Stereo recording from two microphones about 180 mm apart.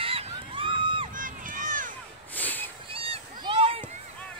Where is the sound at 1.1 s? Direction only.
50° right (ahead or behind).